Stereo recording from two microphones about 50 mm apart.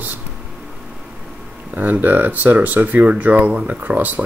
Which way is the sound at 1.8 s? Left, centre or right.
Right.